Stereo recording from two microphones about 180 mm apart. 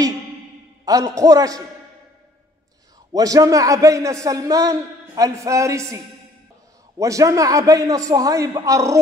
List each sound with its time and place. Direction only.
0.8 s a man's voice: 20° right (ahead or behind)
3.1 s a man's voice: 20° right (ahead or behind)
7.0 s a man's voice: 20° right (ahead or behind)